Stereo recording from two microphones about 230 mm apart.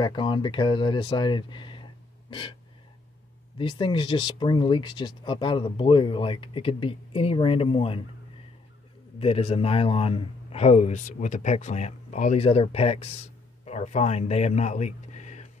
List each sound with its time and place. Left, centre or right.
0.0 s a man's voice: centre
3.5 s a man's voice: left
9.2 s a man's voice: left